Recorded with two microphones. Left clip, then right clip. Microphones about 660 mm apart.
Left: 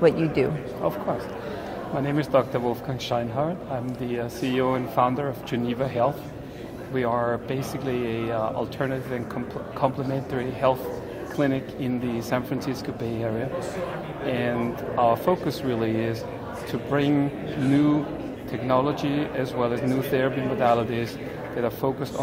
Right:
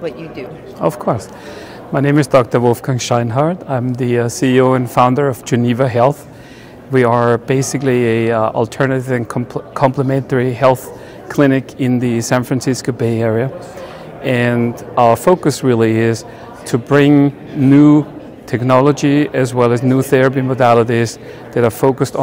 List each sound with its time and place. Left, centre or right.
0.8 s speech: right
18.5 s speech: right